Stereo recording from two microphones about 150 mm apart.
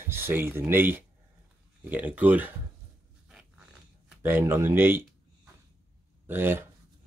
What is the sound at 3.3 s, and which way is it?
Dog, 5° right (ahead or behind).